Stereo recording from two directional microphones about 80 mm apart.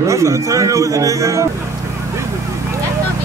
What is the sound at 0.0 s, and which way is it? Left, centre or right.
A man's voice, right.